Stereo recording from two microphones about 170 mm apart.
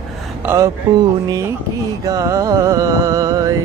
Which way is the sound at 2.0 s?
20° right (ahead or behind).